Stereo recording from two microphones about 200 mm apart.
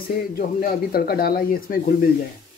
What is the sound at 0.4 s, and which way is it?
Speech, 45° left (ahead or behind).